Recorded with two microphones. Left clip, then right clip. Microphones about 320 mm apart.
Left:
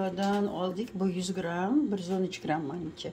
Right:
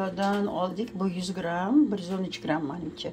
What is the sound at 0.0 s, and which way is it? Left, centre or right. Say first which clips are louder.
A woman's voice: right 2 dB; centre.